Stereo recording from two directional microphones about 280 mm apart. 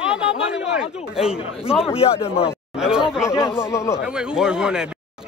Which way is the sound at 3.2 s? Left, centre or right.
Centre.